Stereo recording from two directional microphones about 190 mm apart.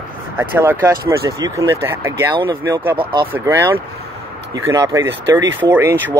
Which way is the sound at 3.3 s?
10° right (ahead or behind).